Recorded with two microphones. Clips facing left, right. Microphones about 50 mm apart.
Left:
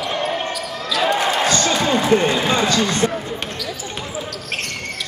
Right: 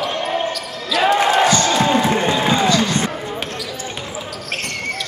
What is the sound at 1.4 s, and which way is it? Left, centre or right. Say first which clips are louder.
Basketball bounce: right 3 dB; right.